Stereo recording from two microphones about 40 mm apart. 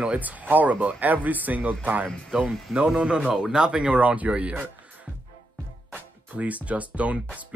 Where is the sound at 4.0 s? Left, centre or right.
Right.